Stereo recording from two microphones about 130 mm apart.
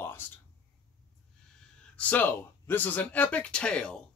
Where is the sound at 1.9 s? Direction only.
10° left (ahead or behind).